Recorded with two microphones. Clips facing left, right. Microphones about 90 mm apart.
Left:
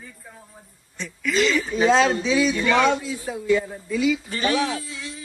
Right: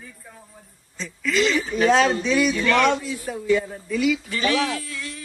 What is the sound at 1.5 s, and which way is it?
A man's voice, centre (ahead or behind).